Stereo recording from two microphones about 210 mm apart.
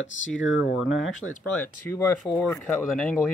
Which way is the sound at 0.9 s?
70° left (ahead or behind).